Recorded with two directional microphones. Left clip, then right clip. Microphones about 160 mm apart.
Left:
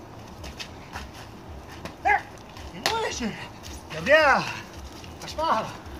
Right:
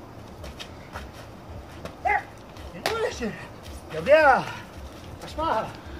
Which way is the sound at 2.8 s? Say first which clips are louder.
Even; 20° right (ahead or behind).